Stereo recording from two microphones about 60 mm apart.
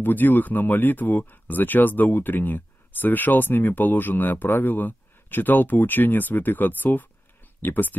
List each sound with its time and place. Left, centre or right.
0.0 s speech: left